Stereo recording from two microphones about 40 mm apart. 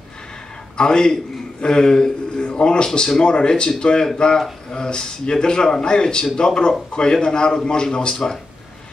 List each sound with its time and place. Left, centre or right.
0.7 s a man's voice: centre